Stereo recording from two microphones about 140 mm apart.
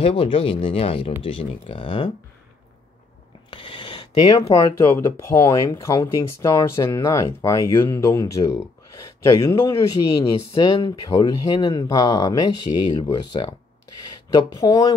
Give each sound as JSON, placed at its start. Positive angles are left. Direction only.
{"t": 0.0, "sound": "speech", "side_deg": 40}
{"t": 3.4, "sound": "a sound", "side_deg": 35}
{"t": 4.3, "sound": "speech", "side_deg": 25}